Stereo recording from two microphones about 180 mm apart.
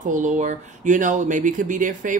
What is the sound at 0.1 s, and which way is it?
Speech, 45° right (ahead or behind).